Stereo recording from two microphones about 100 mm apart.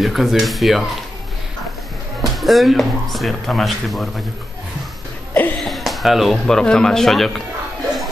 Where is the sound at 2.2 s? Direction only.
Centre (ahead or behind).